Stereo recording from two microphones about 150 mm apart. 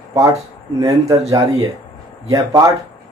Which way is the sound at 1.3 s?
25° right (ahead or behind).